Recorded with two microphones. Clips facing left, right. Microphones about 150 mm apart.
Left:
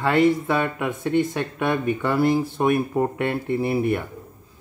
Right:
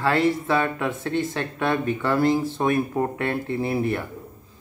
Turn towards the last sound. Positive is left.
turn(degrees=15)  # may be behind; listen again after turning